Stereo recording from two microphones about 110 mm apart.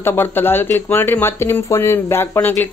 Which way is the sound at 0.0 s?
20° left (ahead or behind).